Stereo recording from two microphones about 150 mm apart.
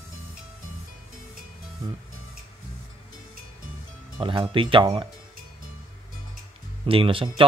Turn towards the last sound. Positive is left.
turn(degrees=-35)  # may be behind; listen again after turning